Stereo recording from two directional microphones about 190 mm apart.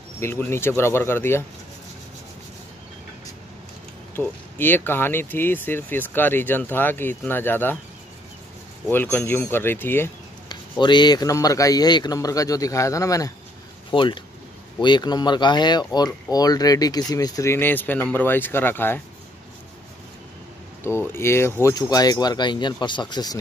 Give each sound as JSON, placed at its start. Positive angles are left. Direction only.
{"t": 0.2, "sound": "speech", "side_deg": 10}
{"t": 4.1, "sound": "speech", "side_deg": 10}
{"t": 8.8, "sound": "speech", "side_deg": 10}
{"t": 10.5, "sound": "speech", "side_deg": 25}
{"t": 21.1, "sound": "speech", "side_deg": 15}